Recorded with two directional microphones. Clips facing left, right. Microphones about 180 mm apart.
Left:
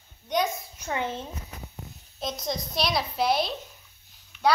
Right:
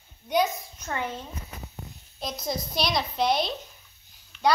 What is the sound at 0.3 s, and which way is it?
Speech, 10° right (ahead or behind).